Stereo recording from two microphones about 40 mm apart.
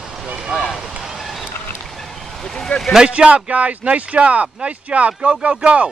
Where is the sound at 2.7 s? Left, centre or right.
Left.